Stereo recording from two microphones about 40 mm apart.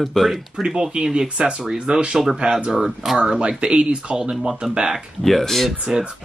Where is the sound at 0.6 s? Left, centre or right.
Right.